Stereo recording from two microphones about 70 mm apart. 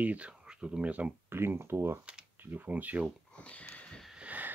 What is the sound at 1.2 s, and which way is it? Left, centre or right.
Speech, right.